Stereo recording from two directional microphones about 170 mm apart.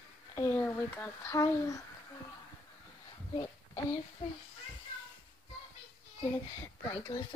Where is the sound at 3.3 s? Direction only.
30° left (ahead or behind).